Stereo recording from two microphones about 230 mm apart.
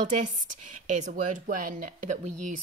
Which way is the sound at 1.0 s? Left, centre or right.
Right.